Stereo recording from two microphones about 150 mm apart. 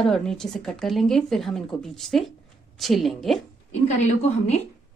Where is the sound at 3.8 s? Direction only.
50° left (ahead or behind).